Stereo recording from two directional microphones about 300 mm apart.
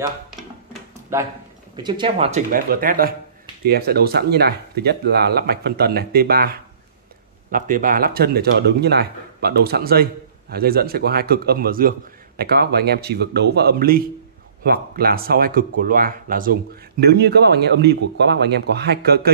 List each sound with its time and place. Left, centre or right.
1.1 s speech: centre; by 19.3 s right